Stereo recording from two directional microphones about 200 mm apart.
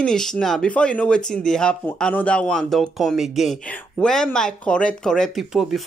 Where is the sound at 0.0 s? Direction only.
5° left (ahead or behind).